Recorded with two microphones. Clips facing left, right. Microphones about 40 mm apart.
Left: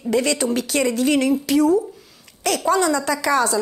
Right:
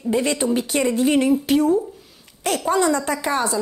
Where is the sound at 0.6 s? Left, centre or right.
Left.